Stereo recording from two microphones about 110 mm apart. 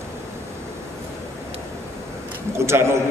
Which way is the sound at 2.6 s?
25° right (ahead or behind).